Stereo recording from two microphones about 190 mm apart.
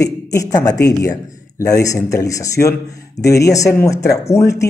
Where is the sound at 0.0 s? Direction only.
15° left (ahead or behind).